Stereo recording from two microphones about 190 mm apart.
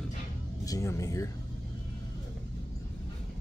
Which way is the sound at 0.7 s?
15° left (ahead or behind).